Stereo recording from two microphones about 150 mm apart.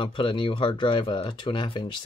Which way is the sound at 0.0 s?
35° left (ahead or behind).